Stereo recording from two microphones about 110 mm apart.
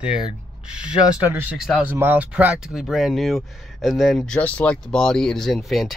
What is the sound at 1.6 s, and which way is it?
Speech, 5° right (ahead or behind).